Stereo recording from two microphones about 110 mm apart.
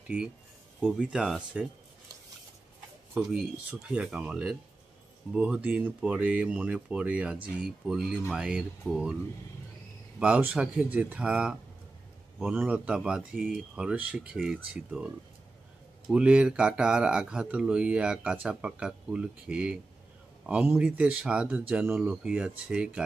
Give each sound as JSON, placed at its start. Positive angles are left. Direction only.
{"t": 0.7, "sound": "speech", "side_deg": -10}
{"t": 3.2, "sound": "speech", "side_deg": -5}
{"t": 10.1, "sound": "speech", "side_deg": -10}